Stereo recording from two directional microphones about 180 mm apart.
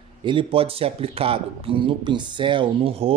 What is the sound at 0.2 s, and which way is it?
Speech, 25° right (ahead or behind).